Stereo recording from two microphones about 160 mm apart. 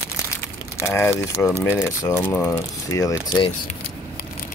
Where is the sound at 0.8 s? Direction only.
15° left (ahead or behind).